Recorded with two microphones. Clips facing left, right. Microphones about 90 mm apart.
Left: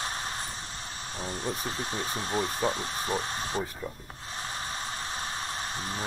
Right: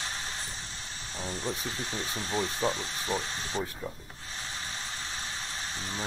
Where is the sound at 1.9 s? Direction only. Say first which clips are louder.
Left 2 dB; 40° left (ahead or behind).